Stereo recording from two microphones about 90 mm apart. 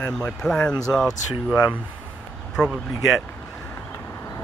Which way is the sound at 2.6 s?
10° left (ahead or behind).